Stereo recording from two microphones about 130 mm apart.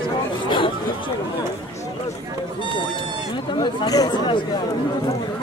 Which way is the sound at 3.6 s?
30° left (ahead or behind).